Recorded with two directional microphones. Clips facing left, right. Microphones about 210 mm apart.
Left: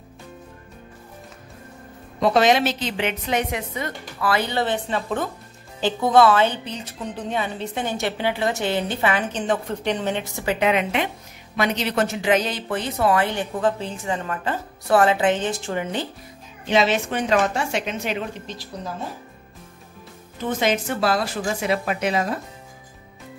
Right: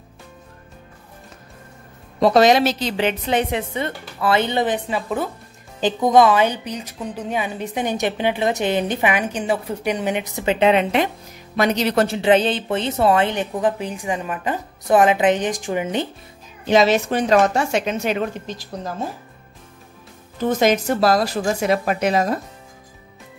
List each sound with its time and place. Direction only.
2.1 s a woman's voice: 35° right (ahead or behind); by 16.1 s 20° right (ahead or behind)
16.6 s speech: 40° right (ahead or behind)
20.4 s speech: 40° right (ahead or behind)